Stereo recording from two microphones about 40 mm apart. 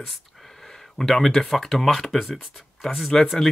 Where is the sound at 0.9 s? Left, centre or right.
Centre.